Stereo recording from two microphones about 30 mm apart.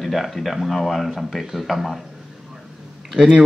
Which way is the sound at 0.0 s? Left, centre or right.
Centre.